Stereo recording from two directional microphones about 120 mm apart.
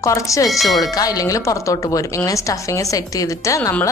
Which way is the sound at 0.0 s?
25° left (ahead or behind).